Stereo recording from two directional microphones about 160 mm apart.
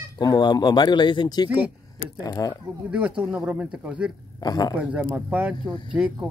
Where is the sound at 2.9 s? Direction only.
5° right (ahead or behind).